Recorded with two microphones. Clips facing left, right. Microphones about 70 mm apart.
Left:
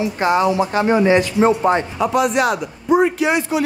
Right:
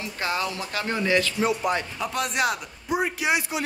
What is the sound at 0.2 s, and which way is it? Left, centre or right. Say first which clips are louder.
Speech: left 12 dB; left.